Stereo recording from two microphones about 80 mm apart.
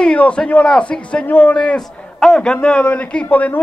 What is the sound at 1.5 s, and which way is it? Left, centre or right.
A man's voice, centre.